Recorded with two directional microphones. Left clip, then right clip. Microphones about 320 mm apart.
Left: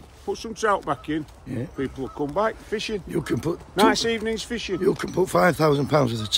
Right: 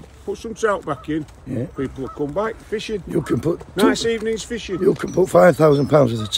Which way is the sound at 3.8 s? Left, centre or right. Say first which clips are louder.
Right 2 dB; centre.